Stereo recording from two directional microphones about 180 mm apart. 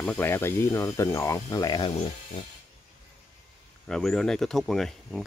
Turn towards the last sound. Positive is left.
turn(degrees=0)  # may be behind; listen again after turning